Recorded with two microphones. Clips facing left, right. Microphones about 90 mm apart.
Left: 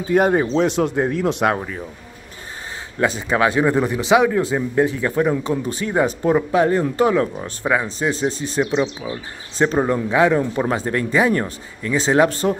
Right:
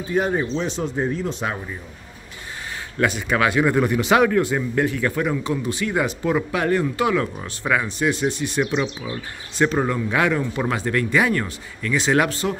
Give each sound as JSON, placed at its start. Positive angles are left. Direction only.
{"t": 0.1, "sound": "speech", "side_deg": 55}
{"t": 3.0, "sound": "a man's voice", "side_deg": 30}
{"t": 8.7, "sound": "speech", "side_deg": 20}
{"t": 12.3, "sound": "a man's voice", "side_deg": 40}